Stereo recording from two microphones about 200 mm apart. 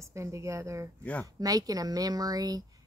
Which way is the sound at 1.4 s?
20° right (ahead or behind).